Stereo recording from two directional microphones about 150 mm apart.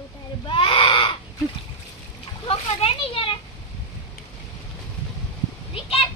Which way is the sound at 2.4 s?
40° left (ahead or behind).